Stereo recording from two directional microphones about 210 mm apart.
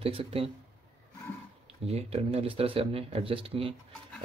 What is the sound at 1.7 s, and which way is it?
Speech, 30° right (ahead or behind).